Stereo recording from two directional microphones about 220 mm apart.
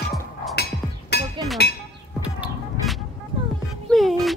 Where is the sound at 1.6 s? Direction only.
45° left (ahead or behind).